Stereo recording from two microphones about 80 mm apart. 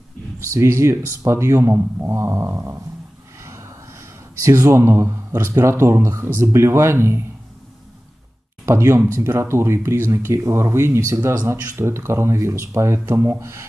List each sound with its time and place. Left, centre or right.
0.5 s speech: right
3.4 s a sound: right
4.4 s speech: right
8.6 s speech: right